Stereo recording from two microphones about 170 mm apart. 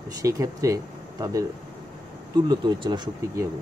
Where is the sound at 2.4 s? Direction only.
25° right (ahead or behind).